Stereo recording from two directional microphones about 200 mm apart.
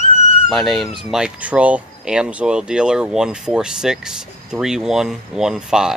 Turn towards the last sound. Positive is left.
turn(degrees=-5)  # may be behind; listen again after turning